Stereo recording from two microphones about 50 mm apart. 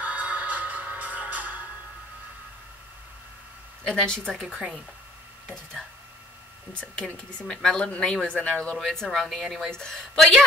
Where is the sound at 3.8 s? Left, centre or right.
Centre.